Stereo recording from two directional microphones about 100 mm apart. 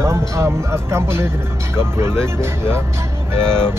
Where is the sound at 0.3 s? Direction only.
30° right (ahead or behind).